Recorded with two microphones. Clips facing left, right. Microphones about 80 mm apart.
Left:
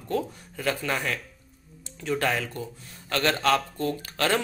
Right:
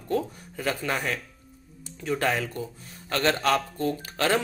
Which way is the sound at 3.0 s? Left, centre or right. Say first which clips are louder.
Even; right.